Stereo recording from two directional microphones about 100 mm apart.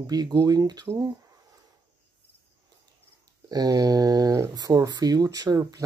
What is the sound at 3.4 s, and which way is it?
Speech, 40° right (ahead or behind).